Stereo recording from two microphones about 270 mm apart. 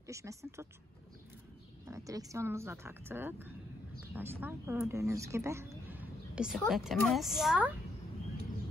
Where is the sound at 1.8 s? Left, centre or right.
Centre.